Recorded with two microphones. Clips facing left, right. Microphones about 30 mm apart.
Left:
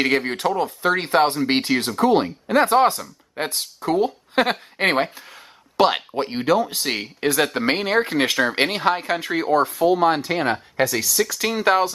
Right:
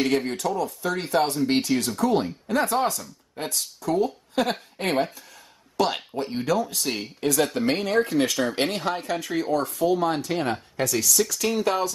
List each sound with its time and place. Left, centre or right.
0.0 s speech: left
6.4 s speech: left